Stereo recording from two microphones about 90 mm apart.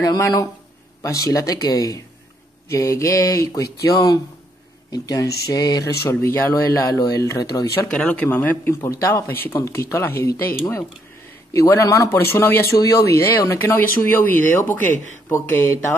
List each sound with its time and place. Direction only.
0.0 s speech: 45° left (ahead or behind)
6.0 s a man's voice: 25° left (ahead or behind)
7.9 s a man's voice: 10° left (ahead or behind)
12.7 s speech: 40° left (ahead or behind)
13.6 s a man's voice: 25° left (ahead or behind)